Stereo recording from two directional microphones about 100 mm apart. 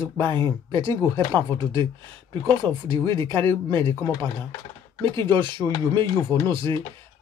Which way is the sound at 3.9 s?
25° left (ahead or behind).